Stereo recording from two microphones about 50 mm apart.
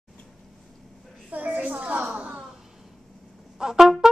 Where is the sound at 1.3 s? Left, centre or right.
Right.